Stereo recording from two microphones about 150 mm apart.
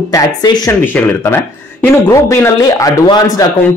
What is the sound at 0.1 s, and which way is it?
Speech, 25° left (ahead or behind).